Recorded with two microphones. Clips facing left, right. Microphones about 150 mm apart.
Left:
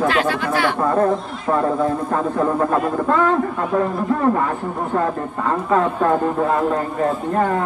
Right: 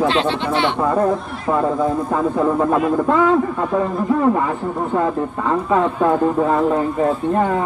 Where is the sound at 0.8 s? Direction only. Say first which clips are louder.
Even; 10° right (ahead or behind).